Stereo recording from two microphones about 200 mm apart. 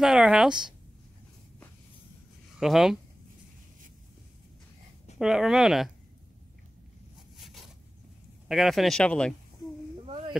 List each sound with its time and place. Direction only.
0.0 s speech: centre (ahead or behind)
2.6 s speech: centre (ahead or behind)
5.2 s speech: centre (ahead or behind)
7.3 s zipper: centre (ahead or behind)
8.5 s speech: centre (ahead or behind)
10.0 s a sound: 30° right (ahead or behind)